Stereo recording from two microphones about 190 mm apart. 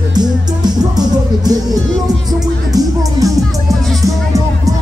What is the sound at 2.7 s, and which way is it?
Music, 20° right (ahead or behind).